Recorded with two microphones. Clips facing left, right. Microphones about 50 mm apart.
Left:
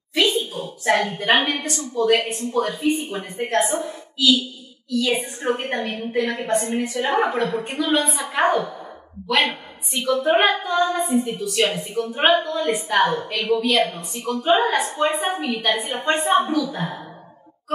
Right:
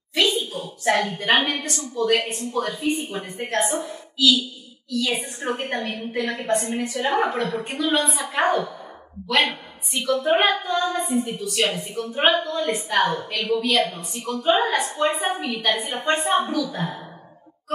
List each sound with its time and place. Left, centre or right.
0.1 s a woman's voice: centre